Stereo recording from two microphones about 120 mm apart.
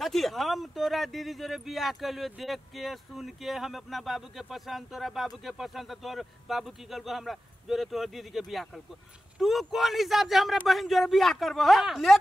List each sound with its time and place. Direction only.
0.0 s speech: centre (ahead or behind)